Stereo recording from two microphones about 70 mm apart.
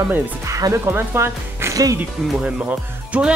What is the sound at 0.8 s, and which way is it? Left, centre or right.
Speech, right.